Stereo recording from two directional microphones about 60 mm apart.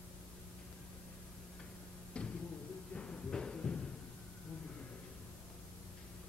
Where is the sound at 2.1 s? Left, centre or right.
Centre.